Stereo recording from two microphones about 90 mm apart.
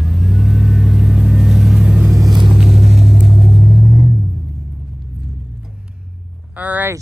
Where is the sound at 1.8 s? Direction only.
15° right (ahead or behind).